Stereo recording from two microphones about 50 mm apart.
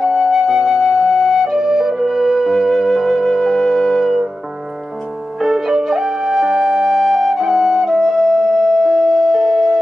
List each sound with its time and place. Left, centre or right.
0.0 s flute: centre
5.4 s music: centre